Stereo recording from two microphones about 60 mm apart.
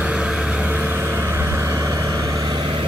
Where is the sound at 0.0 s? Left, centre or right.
Centre.